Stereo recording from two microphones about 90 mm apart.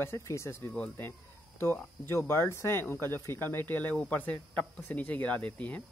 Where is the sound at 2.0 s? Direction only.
30° left (ahead or behind).